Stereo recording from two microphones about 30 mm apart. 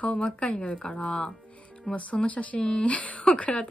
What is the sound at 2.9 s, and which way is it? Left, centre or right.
Speech, left.